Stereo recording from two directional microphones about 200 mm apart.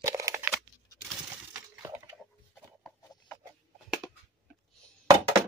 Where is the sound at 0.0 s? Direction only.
15° right (ahead or behind).